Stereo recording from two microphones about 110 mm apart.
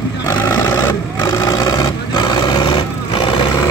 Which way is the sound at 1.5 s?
40° left (ahead or behind).